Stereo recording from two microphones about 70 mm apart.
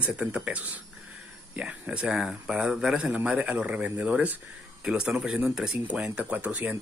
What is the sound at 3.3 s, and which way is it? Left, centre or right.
Speech, right.